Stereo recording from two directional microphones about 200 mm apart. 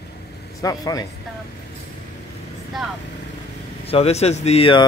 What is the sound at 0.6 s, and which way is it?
Speech, 15° left (ahead or behind).